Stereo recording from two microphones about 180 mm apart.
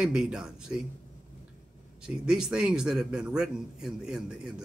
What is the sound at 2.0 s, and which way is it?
A man's voice, 5° right (ahead or behind).